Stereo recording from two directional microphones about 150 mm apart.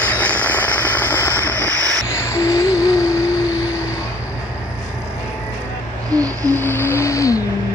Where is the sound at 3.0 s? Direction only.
20° left (ahead or behind).